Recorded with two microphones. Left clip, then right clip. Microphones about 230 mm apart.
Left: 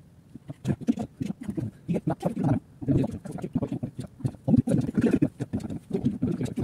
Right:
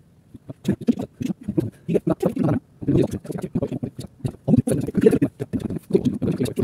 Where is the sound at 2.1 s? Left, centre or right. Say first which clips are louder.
Right 7 dB; right.